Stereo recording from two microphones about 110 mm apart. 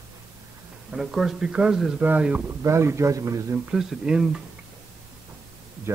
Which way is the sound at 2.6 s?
25° right (ahead or behind).